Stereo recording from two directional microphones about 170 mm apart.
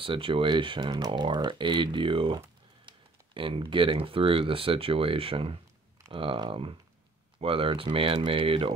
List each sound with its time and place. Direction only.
0.0 s speech: 30° right (ahead or behind)